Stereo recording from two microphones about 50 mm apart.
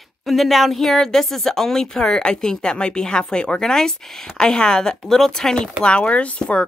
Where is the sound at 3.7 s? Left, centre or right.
Centre.